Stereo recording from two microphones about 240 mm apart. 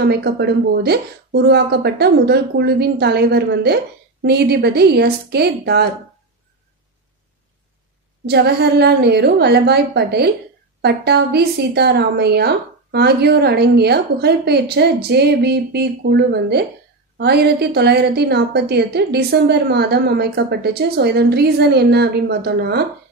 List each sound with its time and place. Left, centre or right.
0.0 s a woman's voice: right
8.3 s a woman's voice: right